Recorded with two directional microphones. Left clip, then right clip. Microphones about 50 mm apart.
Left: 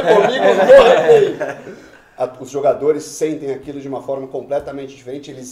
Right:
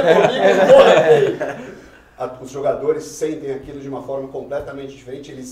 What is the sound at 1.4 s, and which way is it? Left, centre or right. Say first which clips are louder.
Speech: left 1 dB; left.